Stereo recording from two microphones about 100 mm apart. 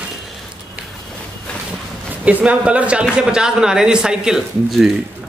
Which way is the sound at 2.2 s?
15° right (ahead or behind).